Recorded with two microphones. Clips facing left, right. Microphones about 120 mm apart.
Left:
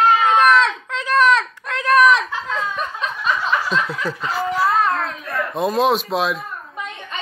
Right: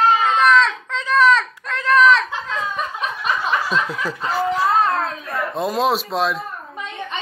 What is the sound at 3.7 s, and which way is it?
Snicker, 10° right (ahead or behind).